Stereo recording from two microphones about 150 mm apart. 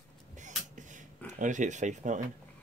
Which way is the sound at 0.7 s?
55° right (ahead or behind).